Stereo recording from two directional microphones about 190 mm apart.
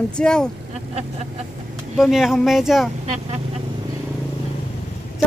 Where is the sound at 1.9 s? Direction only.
Centre (ahead or behind).